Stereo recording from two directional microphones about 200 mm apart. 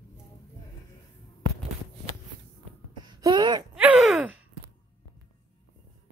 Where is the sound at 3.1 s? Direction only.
20° right (ahead or behind).